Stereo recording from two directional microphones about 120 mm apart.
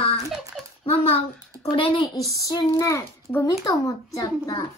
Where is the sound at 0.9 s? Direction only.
55° left (ahead or behind).